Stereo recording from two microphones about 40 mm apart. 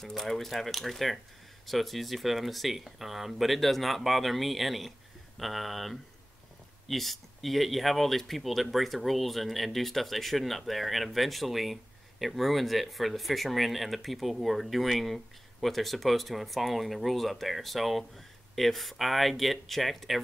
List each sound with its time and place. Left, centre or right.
0.0 s speech: centre